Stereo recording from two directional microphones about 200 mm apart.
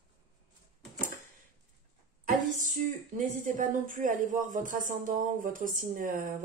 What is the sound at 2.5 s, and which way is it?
A woman's voice, 40° right (ahead or behind).